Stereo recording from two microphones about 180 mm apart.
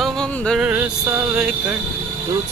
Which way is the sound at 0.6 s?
10° right (ahead or behind).